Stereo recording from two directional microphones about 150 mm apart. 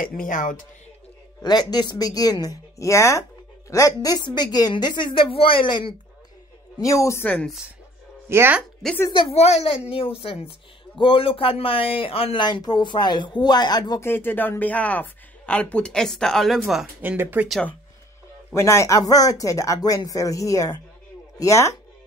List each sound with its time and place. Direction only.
0.0 s speech: 65° left (ahead or behind)
1.4 s a woman's voice: 30° left (ahead or behind)
6.8 s speech: 20° left (ahead or behind)
8.3 s speech: 15° right (ahead or behind)
9.1 s speech: 40° left (ahead or behind)
14.0 s speech: 15° left (ahead or behind)
17.0 s speech: 15° right (ahead or behind)
17.5 s speech: 5° left (ahead or behind)
18.5 s a woman's voice: 20° left (ahead or behind)